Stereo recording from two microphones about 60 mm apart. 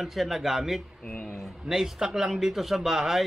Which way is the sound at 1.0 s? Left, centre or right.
Centre.